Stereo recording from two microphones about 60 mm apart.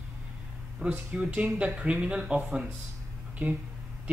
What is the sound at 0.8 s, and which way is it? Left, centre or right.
Speech, centre.